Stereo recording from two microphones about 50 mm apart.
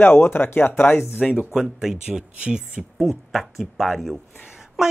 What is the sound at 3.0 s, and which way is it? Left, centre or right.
Speech, centre.